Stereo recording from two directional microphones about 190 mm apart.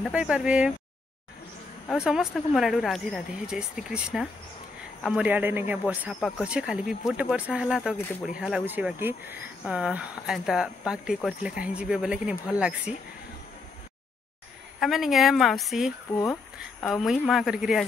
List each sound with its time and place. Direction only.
0.0 s speech: 5° right (ahead or behind)
1.9 s speech: centre (ahead or behind)
14.8 s speech: centre (ahead or behind)
16.1 s speech: 15° left (ahead or behind)
16.8 s speech: centre (ahead or behind)